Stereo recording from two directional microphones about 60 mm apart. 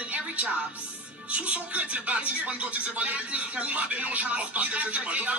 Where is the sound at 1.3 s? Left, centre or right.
Right.